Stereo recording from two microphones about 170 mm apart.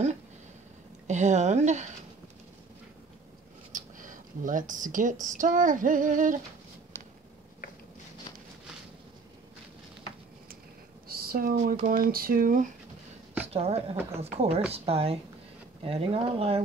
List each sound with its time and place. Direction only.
1.0 s female singing: 45° right (ahead or behind)
3.7 s a sound: 50° right (ahead or behind)
5.2 s female singing: 50° right (ahead or behind)
11.1 s speech: 60° right (ahead or behind)
13.5 s speech: 35° right (ahead or behind)